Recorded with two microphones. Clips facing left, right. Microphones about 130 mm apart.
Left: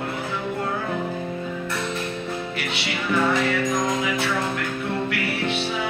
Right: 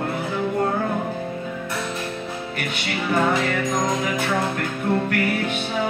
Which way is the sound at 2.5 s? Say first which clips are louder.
Right 1 dB; 50° right (ahead or behind).